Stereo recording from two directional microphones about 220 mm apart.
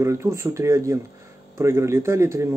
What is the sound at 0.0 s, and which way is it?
Speech, 10° right (ahead or behind).